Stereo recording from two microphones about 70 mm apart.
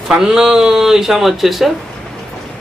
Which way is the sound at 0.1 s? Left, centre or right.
Centre.